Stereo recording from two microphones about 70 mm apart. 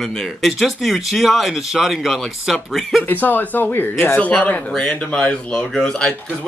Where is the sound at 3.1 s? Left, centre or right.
Left.